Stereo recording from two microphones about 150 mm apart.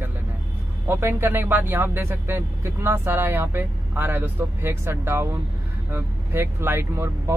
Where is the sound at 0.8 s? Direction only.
15° right (ahead or behind).